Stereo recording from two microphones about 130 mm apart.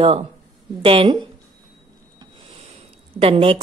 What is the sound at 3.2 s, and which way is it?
Speech, 45° right (ahead or behind).